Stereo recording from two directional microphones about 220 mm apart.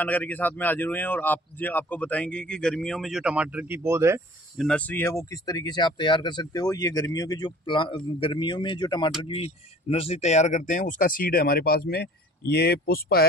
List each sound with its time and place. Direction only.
0.0 s speech: 5° left (ahead or behind); by 4.2 s 10° right (ahead or behind)
4.6 s speech: 5° left (ahead or behind); by 13.3 s 45° left (ahead or behind)